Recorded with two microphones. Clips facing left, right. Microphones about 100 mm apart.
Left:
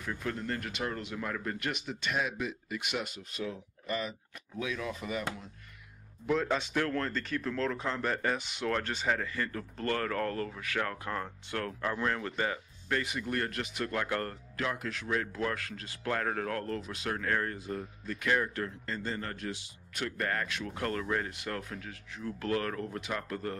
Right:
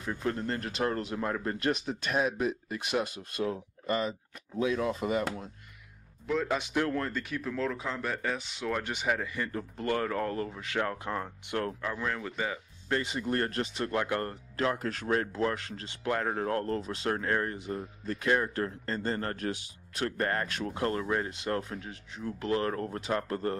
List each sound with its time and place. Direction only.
0.0 s speech: 25° right (ahead or behind)
6.2 s speech: centre (ahead or behind)
6.6 s speech: 15° right (ahead or behind)
8.8 s speech: 15° right (ahead or behind)
11.8 s speech: centre (ahead or behind)
12.9 s speech: 25° right (ahead or behind)
14.6 s speech: 35° right (ahead or behind)
15.3 s speech: 25° right (ahead or behind)
18.0 s speech: 35° right (ahead or behind); by 19.6 s 50° right (ahead or behind)
20.0 s speech: 35° right (ahead or behind)
20.7 s speech: 25° right (ahead or behind)